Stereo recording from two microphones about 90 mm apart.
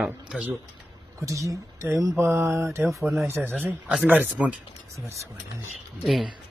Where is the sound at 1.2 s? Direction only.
35° right (ahead or behind).